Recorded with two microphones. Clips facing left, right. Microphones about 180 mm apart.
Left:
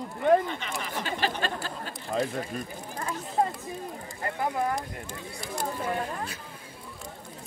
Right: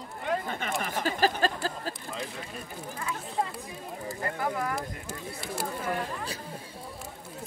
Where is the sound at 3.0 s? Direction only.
45° left (ahead or behind).